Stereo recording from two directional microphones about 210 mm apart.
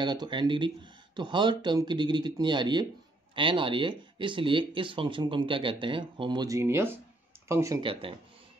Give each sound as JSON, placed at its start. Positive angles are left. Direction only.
{"t": 0.0, "sound": "speech", "side_deg": -20}